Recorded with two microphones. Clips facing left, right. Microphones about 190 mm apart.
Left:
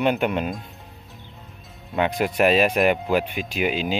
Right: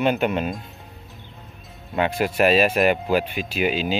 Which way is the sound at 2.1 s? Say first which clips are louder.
Right 1 dB; 15° left (ahead or behind).